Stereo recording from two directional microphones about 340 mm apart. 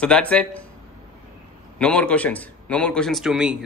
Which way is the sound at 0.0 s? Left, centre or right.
Centre.